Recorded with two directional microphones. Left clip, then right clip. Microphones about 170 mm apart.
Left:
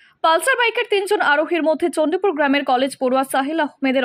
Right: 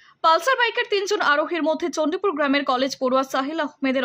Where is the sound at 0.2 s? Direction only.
10° left (ahead or behind).